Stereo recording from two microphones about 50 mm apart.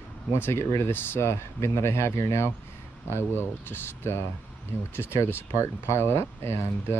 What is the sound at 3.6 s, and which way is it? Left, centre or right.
Speech, left.